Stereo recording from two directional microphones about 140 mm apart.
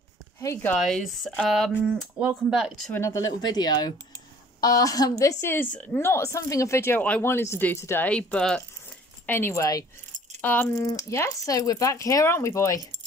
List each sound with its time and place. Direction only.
0.4 s speech: 15° left (ahead or behind)
0.7 s speech: centre (ahead or behind)
2.9 s speech: 20° left (ahead or behind)
5.2 s speech: 15° left (ahead or behind)
10.4 s speech: 15° left (ahead or behind)